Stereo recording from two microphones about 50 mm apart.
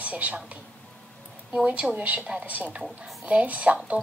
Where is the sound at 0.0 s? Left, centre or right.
Right.